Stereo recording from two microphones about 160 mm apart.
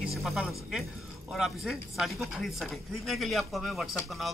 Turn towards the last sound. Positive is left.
turn(degrees=0)  # may be behind; listen again after turning